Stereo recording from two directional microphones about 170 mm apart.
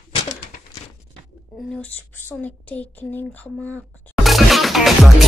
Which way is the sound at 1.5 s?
5° left (ahead or behind).